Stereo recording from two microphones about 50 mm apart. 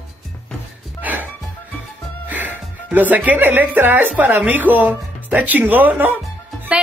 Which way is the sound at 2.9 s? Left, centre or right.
Right.